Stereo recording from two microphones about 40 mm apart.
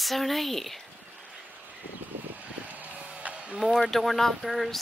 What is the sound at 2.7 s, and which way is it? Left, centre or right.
Vehicle, right.